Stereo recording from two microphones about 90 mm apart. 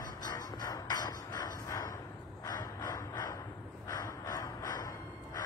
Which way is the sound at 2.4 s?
45° left (ahead or behind).